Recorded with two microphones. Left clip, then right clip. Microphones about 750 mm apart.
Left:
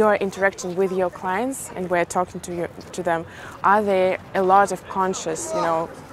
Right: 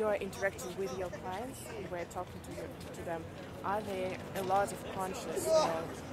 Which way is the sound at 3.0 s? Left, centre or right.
Left.